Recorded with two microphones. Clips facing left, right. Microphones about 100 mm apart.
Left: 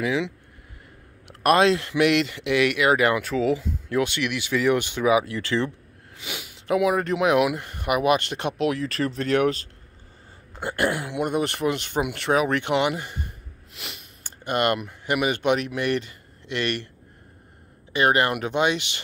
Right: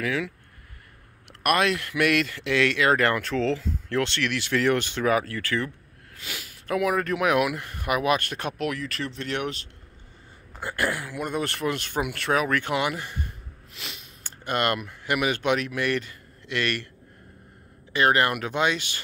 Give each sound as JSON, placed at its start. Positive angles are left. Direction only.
{"t": 0.0, "sound": "speech", "side_deg": 20}
{"t": 1.4, "sound": "speech", "side_deg": 25}
{"t": 8.6, "sound": "speech", "side_deg": 30}
{"t": 10.6, "sound": "speech", "side_deg": 25}
{"t": 17.9, "sound": "speech", "side_deg": 15}